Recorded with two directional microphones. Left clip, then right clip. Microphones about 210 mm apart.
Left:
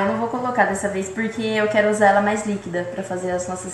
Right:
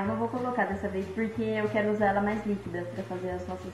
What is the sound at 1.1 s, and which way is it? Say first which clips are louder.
Speech: left 8 dB; 20° left (ahead or behind).